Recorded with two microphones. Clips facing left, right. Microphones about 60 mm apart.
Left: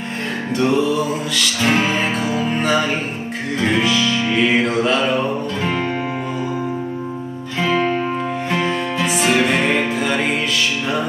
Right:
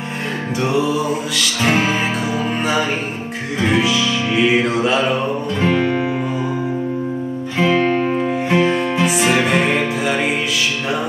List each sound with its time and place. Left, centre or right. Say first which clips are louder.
0.6 s music: left 1 dB; centre
7.5 s music: right 2 dB; right
8.5 s music: right 5 dB; centre